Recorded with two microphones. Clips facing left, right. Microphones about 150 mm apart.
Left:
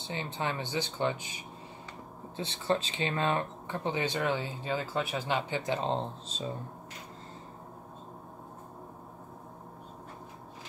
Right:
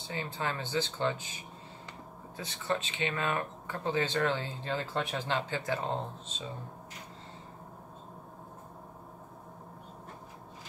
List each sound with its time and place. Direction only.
0.0 s speech: 20° left (ahead or behind)
2.3 s speech: 30° left (ahead or behind)